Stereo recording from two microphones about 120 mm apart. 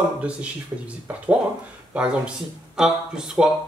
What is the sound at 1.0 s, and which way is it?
Speech, 10° right (ahead or behind).